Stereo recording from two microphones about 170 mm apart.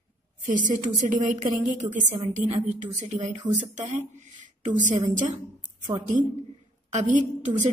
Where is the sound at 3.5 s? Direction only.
45° right (ahead or behind).